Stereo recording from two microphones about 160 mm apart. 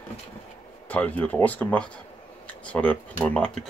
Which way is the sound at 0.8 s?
10° left (ahead or behind).